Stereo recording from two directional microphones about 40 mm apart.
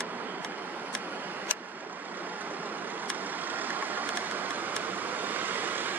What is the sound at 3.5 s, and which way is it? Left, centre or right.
Vehicle, right.